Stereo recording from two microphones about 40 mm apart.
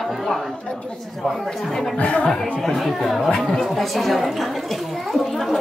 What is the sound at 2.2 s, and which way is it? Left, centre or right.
A woman's voice, centre.